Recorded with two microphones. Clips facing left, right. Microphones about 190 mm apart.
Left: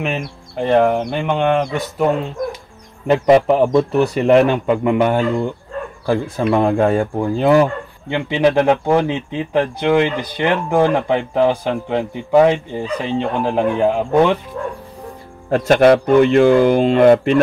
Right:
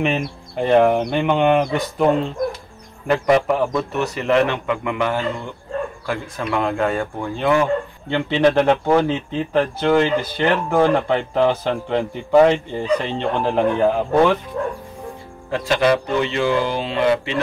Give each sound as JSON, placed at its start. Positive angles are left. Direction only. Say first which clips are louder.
{"t": 0.0, "sound": "speech", "louder": "right 2 dB", "side_deg": 0}
{"t": 3.1, "sound": "a man's voice", "louder": "left 5 dB", "side_deg": 25}
{"t": 8.1, "sound": "speech", "louder": "left 1 dB", "side_deg": 10}
{"t": 15.5, "sound": "speech", "louder": "left 6 dB", "side_deg": 50}